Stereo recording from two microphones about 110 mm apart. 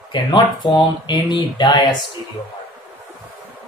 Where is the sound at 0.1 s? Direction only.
45° left (ahead or behind).